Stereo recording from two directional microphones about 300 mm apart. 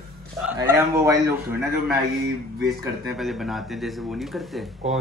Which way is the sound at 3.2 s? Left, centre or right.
Centre.